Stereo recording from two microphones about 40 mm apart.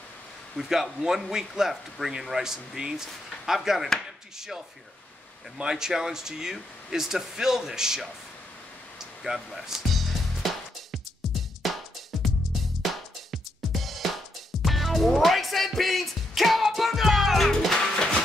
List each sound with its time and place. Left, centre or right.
0.6 s speech: centre
9.3 s speech: right
9.7 s music: centre
12.8 s music: centre
17.7 s music: centre